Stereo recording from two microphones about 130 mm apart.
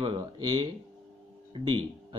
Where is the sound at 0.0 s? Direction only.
35° right (ahead or behind).